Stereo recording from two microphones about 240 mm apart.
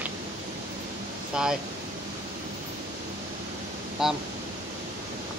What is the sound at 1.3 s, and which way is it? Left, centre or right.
Speech, centre.